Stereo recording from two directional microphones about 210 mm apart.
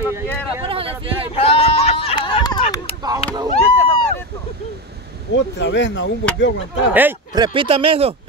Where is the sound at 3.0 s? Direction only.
20° right (ahead or behind).